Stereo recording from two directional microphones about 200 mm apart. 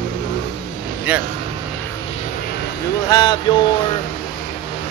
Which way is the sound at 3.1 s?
20° left (ahead or behind).